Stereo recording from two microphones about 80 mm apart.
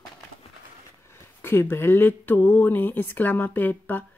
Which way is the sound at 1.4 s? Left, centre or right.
Left.